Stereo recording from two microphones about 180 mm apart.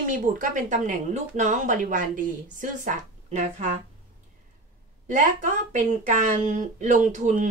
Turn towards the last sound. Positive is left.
turn(degrees=-40)  # may be behind; listen again after turning